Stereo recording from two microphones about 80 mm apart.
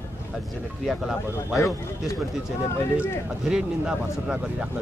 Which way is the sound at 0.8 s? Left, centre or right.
Centre.